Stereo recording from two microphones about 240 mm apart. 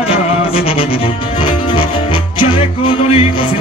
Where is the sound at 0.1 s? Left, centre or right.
Left.